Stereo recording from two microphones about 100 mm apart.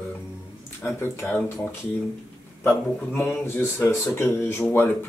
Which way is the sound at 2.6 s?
20° left (ahead or behind).